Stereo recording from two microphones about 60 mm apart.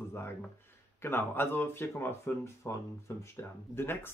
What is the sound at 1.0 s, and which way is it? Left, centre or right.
Speech, left.